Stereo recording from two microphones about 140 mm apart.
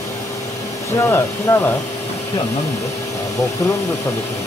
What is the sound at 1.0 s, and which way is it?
Speech, 15° left (ahead or behind).